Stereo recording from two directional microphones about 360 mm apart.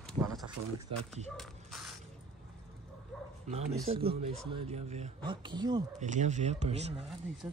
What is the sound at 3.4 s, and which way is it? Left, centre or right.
Speech, centre.